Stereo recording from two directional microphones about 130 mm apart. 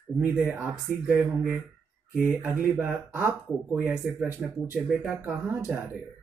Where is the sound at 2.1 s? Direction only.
20° left (ahead or behind).